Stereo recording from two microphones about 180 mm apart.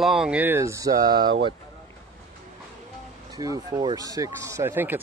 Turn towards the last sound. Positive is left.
turn(degrees=-10)  # may be behind; listen again after turning